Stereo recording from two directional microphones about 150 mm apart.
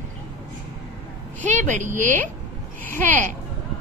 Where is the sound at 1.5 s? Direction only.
55° right (ahead or behind).